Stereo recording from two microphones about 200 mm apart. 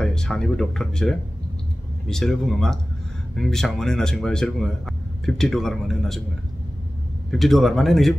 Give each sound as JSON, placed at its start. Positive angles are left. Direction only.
{"t": 0.0, "sound": "speech", "side_deg": 5}
{"t": 7.2, "sound": "speech", "side_deg": 0}